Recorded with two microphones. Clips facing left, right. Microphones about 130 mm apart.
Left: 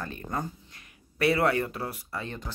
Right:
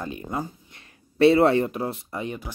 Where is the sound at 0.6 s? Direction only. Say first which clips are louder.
Right 2 dB; 25° right (ahead or behind).